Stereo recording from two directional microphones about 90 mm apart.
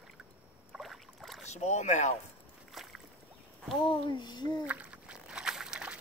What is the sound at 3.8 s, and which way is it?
Speech, 65° left (ahead or behind).